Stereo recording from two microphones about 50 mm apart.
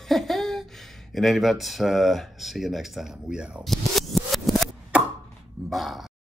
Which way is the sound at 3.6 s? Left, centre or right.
Centre.